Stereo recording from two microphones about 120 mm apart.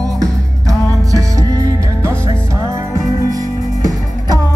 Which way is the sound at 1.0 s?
30° right (ahead or behind).